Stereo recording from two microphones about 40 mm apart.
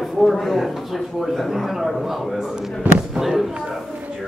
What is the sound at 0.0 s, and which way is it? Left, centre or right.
Speech, centre.